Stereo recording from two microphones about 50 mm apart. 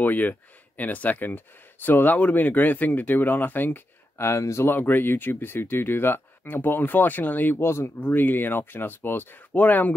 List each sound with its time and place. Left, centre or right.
0.0 s speech: left
4.2 s speech: left
4.6 s speech: left
7.6 s speech: left
8.0 s speech: left